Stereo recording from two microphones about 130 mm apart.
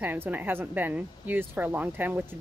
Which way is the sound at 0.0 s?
15° right (ahead or behind).